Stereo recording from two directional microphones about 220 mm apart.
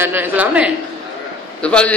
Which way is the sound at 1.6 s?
5° left (ahead or behind).